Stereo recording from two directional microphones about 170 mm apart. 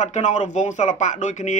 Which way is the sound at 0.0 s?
45° left (ahead or behind).